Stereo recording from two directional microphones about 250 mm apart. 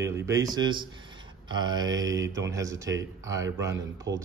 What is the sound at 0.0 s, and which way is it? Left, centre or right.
Speech, centre.